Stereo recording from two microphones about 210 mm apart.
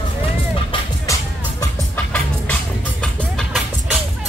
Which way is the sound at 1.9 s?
5° left (ahead or behind).